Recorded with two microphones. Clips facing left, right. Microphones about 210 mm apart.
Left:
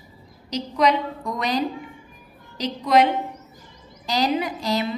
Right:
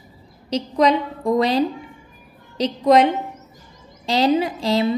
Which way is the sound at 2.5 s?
35° right (ahead or behind).